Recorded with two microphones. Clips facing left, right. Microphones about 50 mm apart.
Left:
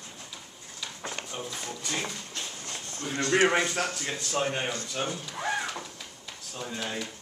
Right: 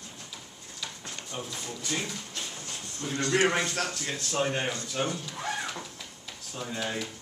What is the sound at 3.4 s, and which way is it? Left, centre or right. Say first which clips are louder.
Speech: left 2 dB; centre.